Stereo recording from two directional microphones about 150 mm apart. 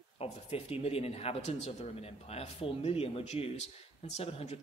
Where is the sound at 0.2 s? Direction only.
40° left (ahead or behind).